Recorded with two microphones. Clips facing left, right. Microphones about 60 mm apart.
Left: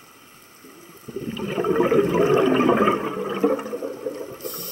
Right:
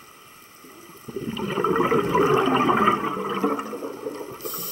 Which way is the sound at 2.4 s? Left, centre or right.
Centre.